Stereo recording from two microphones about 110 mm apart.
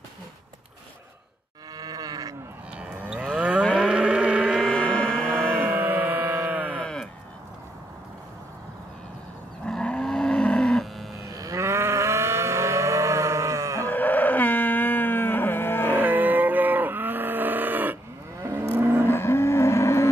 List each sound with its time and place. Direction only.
1.8 s livestock: 35° right (ahead or behind)
3.3 s moo: 10° right (ahead or behind)
3.7 s vehicle: 10° right (ahead or behind)
4.6 s a sound: 10° left (ahead or behind)
5.6 s music: 20° right (ahead or behind)
6.8 s sheep: 5° left (ahead or behind)
9.7 s livestock: 5° left (ahead or behind)
11.3 s livestock: 30° right (ahead or behind)
13.8 s a sound: 15° left (ahead or behind)
15.9 s livestock: 15° right (ahead or behind)
18.4 s moo: 20° right (ahead or behind)
19.0 s cattle: 20° left (ahead or behind)